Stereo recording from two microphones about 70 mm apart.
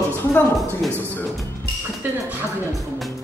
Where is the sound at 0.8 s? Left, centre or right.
Centre.